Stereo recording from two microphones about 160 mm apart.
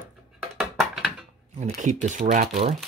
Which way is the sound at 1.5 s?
50° right (ahead or behind).